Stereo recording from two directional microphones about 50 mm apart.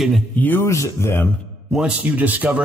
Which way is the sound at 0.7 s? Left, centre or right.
Left.